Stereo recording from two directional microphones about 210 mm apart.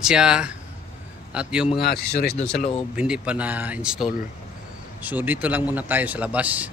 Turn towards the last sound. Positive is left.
turn(degrees=-5)  # may be behind; listen again after turning